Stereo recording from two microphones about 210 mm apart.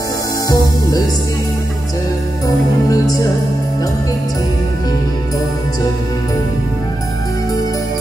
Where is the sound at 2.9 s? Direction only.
20° left (ahead or behind).